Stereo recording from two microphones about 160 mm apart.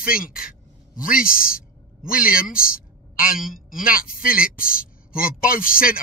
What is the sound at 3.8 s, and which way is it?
A man's voice, 60° left (ahead or behind).